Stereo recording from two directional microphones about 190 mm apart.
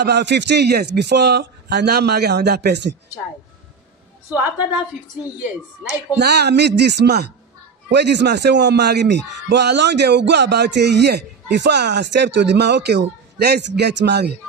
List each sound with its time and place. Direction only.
0.0 s speech: 65° right (ahead or behind)
4.3 s a woman's voice: 10° right (ahead or behind)
6.1 s speech: 60° right (ahead or behind)